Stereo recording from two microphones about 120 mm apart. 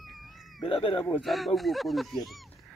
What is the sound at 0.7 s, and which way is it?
Speech, 50° left (ahead or behind).